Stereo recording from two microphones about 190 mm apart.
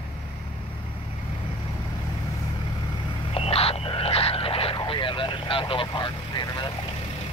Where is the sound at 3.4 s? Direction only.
30° left (ahead or behind).